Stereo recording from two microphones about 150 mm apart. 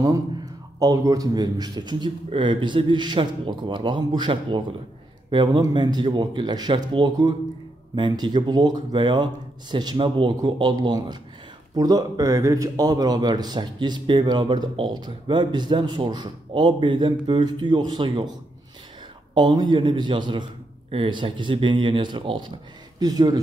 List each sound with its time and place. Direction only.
0.7 s a man's voice: 25° right (ahead or behind)
19.3 s a man's voice: 30° right (ahead or behind)